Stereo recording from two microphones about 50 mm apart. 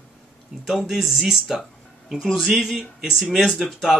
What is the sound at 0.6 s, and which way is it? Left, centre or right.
Speech, centre.